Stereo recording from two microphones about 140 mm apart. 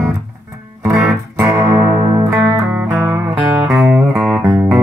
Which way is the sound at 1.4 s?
20° right (ahead or behind).